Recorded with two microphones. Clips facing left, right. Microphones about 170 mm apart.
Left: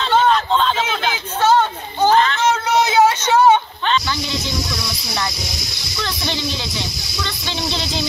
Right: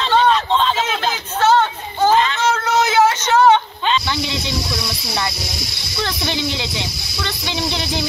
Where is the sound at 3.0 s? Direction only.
10° left (ahead or behind).